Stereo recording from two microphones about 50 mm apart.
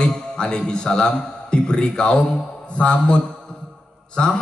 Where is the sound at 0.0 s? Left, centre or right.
Centre.